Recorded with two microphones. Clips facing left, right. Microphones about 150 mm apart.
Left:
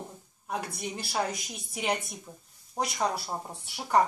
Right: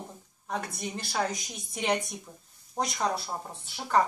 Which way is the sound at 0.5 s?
5° left (ahead or behind).